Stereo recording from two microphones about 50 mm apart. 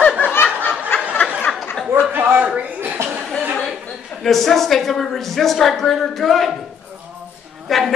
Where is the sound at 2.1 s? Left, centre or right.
Right.